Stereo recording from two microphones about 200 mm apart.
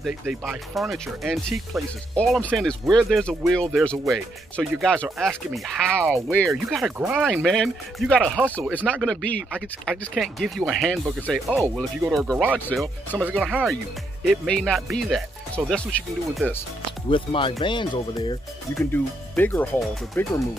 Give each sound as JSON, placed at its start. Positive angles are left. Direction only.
{"t": 0.0, "sound": "speech", "side_deg": -5}
{"t": 13.2, "sound": "speech", "side_deg": -5}
{"t": 17.1, "sound": "speech", "side_deg": 25}
{"t": 18.8, "sound": "speech", "side_deg": 10}